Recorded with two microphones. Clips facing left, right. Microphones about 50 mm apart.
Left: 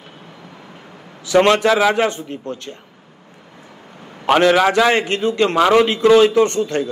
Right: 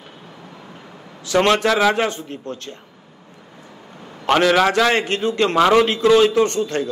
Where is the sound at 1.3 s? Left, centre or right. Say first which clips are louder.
Left 3 dB; left.